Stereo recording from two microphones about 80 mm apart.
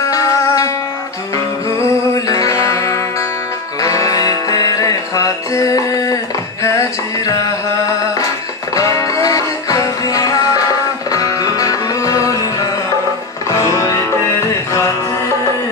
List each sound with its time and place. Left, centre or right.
0.1 s music: left
2.1 s music: left
8.7 s music: left